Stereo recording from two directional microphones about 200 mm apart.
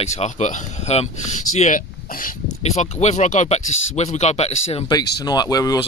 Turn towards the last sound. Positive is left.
turn(degrees=20)  # may be behind; listen again after turning